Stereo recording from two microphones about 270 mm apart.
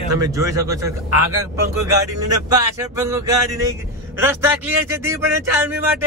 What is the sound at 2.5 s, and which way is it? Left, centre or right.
Speech, centre.